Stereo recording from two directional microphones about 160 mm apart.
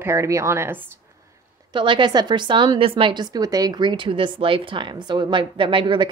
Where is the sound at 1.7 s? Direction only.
30° right (ahead or behind).